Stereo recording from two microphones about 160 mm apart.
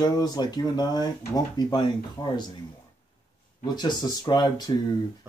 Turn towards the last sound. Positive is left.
turn(degrees=25)  # may be behind; listen again after turning